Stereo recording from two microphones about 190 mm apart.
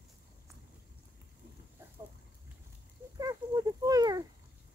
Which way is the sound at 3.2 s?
20° right (ahead or behind).